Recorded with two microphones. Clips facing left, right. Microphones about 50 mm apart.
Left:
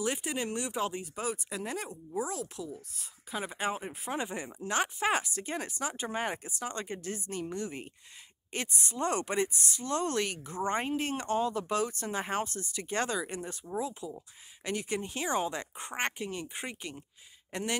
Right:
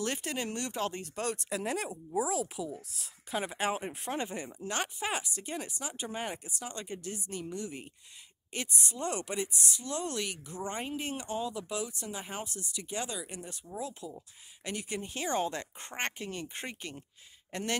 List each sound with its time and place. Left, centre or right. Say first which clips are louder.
0.0 s speech: left 2 dB; centre
4.2 s speech: left 1 dB; centre
4.6 s speech: left 5 dB; left
13.5 s speech: left 4 dB; left